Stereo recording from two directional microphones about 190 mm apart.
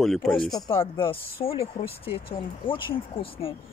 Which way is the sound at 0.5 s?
20° left (ahead or behind).